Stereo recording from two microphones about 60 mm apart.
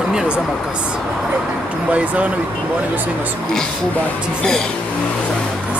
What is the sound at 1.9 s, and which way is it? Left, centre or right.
Speech, right.